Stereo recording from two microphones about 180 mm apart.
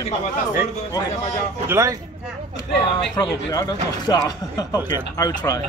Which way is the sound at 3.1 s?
20° left (ahead or behind).